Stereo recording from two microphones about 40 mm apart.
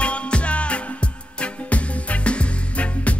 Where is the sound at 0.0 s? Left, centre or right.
Left.